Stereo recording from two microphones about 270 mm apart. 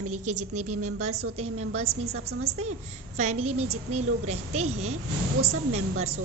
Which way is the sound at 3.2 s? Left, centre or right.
Right.